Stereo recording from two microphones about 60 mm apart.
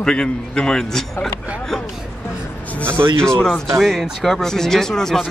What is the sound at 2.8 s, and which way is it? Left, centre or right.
Speech, right.